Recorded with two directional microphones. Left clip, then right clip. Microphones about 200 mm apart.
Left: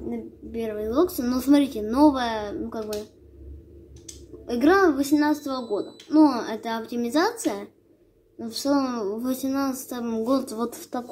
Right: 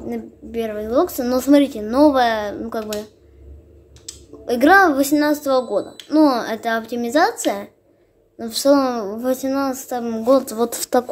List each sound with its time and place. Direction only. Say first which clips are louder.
0.1 s a woman's voice: right 6 dB; 35° right (ahead or behind)
4.5 s a child's voice: right 7 dB; 40° right (ahead or behind)
10.7 s speech: right 14 dB; 55° right (ahead or behind)